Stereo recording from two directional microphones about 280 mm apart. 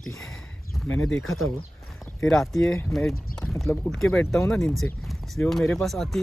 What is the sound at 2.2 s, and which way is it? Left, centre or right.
Speech, centre.